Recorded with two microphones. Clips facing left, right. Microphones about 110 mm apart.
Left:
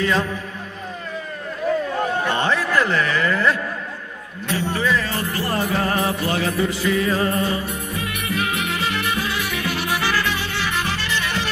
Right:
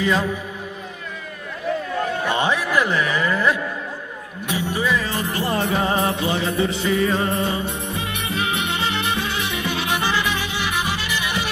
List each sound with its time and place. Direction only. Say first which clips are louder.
0.0 s speech: even; 10° right (ahead or behind)
2.2 s speech: even; 15° right (ahead or behind)
4.5 s music: left 1 dB; 15° right (ahead or behind)